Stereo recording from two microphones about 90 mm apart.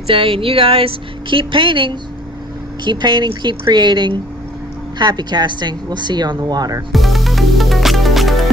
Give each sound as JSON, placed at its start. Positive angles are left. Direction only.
{"t": 0.0, "sound": "speech", "side_deg": -80}
{"t": 6.9, "sound": "music", "side_deg": 0}